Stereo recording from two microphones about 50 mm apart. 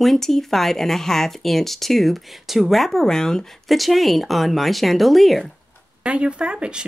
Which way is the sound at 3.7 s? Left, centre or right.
Centre.